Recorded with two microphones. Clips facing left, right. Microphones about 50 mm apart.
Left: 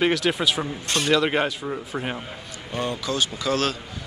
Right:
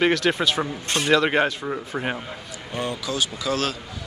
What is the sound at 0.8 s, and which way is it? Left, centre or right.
Speech, right.